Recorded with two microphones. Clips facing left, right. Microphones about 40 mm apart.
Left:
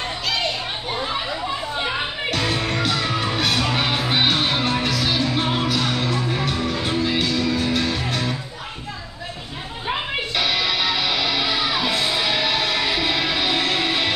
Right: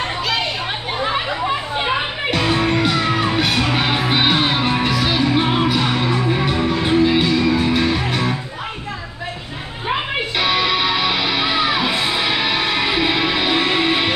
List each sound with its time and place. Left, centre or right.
1.8 s music: right
9.8 s music: centre